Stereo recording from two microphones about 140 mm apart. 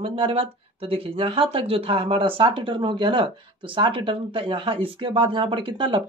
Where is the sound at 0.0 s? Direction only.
40° right (ahead or behind).